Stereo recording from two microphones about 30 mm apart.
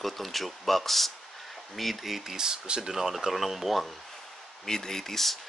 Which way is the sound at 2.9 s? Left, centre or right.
Centre.